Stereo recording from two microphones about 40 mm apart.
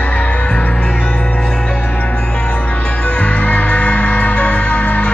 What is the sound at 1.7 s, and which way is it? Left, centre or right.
Music, left.